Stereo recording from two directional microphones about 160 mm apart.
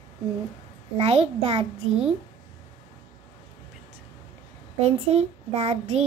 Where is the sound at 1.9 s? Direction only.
5° right (ahead or behind).